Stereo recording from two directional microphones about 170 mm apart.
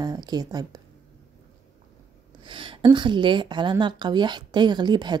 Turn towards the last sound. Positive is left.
turn(degrees=-25)  # may be behind; listen again after turning